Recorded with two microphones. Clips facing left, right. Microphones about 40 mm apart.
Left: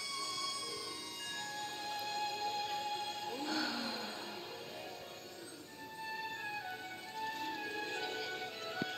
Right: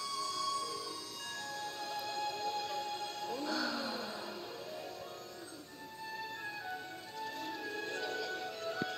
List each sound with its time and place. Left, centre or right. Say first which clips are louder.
0.0 s music: right 4 dB; left
7.4 s music: even; left